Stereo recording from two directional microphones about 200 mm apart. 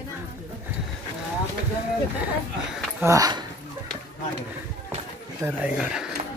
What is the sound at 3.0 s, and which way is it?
Speech, 20° right (ahead or behind).